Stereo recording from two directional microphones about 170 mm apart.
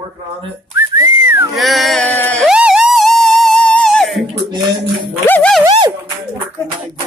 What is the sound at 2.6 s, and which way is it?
Music, 5° right (ahead or behind).